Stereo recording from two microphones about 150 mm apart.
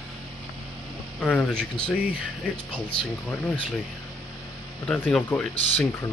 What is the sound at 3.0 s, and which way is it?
Speech, 5° left (ahead or behind).